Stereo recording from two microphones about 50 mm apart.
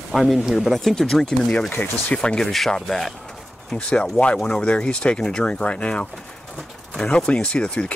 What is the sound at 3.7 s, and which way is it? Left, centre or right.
Speech, centre.